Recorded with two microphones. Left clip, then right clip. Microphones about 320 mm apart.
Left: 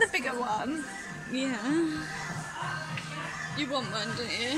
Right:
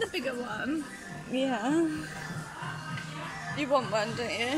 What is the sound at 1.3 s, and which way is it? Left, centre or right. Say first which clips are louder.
Speech: right 2 dB; centre.